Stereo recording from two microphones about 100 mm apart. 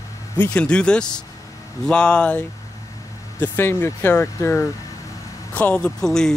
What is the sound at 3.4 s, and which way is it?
Speech, 20° left (ahead or behind).